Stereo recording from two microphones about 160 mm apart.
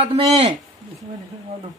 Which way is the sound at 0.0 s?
40° right (ahead or behind).